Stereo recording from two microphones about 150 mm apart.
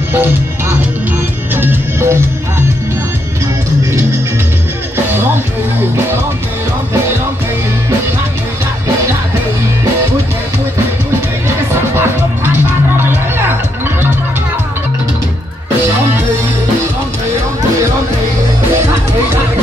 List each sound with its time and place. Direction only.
0.1 s music: 15° right (ahead or behind)
11.4 s music: 15° right (ahead or behind)
18.8 s music: 15° right (ahead or behind)